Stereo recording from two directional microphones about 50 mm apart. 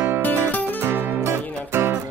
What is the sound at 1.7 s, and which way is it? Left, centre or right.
Music, right.